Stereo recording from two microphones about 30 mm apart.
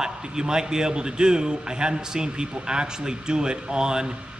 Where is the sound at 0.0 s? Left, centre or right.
Right.